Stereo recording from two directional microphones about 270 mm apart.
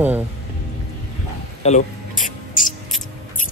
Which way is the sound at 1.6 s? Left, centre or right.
Left.